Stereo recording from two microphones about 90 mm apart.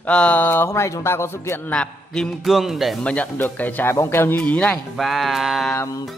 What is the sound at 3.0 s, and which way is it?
Speech, 15° left (ahead or behind).